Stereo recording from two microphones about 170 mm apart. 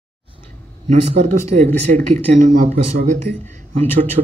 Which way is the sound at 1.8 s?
40° right (ahead or behind).